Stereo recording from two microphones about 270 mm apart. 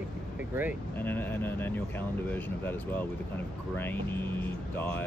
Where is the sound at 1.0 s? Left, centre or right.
Centre.